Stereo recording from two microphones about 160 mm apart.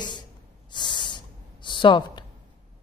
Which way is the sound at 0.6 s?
30° left (ahead or behind).